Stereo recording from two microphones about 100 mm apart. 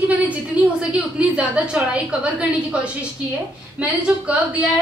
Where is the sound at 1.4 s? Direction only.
10° right (ahead or behind).